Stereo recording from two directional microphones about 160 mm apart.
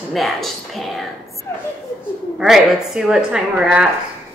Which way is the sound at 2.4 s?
5° right (ahead or behind).